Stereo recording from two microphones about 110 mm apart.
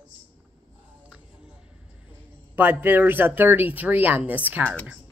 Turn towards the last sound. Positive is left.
turn(degrees=-15)  # may be behind; listen again after turning